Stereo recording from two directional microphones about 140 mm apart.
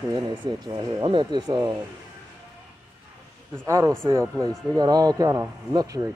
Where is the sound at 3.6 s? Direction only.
25° right (ahead or behind).